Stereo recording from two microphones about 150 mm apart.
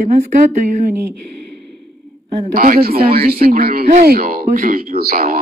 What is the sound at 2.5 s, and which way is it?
A man's voice, 75° right (ahead or behind).